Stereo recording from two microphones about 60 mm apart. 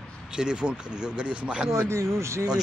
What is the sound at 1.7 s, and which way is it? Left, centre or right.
Speech, right.